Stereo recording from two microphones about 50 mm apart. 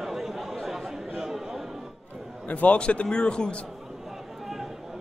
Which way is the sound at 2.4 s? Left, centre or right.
Left.